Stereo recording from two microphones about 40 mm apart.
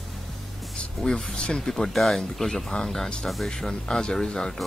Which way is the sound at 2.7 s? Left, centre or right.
Left.